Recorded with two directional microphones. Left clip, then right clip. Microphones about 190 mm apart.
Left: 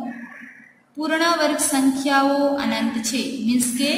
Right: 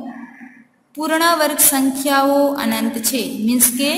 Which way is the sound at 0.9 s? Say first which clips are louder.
Right 4 dB; 50° right (ahead or behind).